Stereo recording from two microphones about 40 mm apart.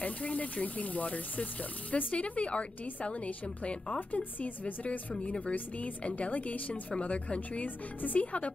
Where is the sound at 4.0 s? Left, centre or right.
Left.